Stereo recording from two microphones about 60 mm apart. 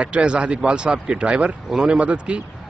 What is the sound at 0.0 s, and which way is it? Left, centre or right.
Speech, centre.